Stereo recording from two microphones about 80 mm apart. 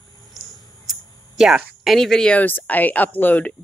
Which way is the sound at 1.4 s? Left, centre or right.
Centre.